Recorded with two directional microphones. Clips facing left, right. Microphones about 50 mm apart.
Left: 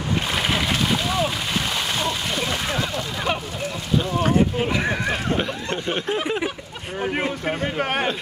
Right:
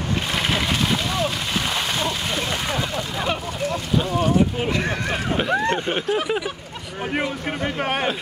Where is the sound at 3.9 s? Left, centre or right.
Centre.